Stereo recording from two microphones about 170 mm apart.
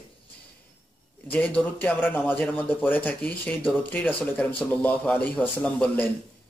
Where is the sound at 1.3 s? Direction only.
5° left (ahead or behind).